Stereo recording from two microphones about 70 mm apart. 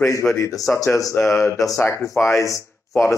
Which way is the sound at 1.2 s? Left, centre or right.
Left.